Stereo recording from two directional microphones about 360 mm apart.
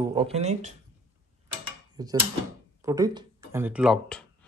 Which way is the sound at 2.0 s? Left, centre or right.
Centre.